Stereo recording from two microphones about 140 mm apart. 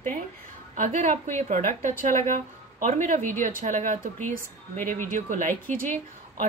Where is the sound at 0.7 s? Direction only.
65° right (ahead or behind).